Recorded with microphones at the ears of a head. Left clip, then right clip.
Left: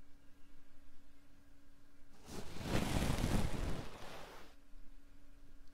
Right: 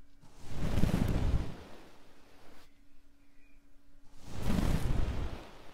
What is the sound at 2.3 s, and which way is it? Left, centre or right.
Waves, left.